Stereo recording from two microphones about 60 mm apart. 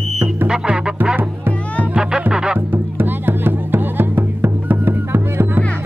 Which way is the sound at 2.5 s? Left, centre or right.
Right.